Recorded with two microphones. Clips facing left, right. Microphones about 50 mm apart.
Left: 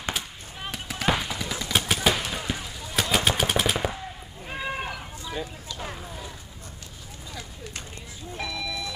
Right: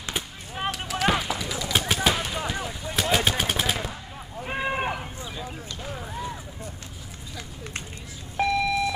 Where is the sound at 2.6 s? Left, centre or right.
Right.